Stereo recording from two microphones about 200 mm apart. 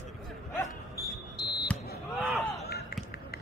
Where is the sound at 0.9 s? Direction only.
55° left (ahead or behind).